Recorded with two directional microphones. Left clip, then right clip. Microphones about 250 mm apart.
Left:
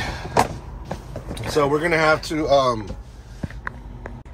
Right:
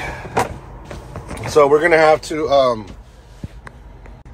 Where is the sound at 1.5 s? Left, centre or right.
Centre.